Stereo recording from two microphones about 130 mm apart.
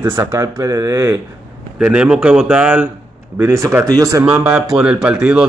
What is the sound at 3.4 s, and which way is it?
Speech, 20° right (ahead or behind).